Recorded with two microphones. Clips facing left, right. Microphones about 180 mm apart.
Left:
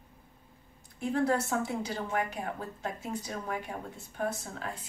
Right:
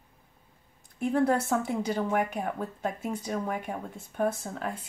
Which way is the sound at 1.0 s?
55° right (ahead or behind).